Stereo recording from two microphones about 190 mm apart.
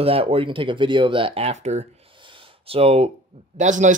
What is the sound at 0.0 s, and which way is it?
Speech, 30° right (ahead or behind).